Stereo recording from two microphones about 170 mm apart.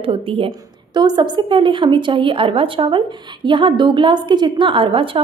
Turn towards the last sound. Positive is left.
turn(degrees=-30)  # may be behind; listen again after turning